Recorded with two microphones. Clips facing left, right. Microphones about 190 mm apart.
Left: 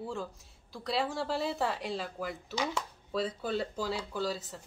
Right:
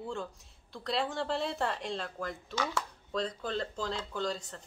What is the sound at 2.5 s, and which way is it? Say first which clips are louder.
Speech: even; 15° left (ahead or behind).